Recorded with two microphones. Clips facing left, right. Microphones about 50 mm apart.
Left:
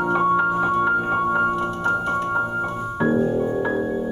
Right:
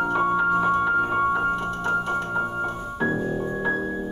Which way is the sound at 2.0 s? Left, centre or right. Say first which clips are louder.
Left 3 dB; centre.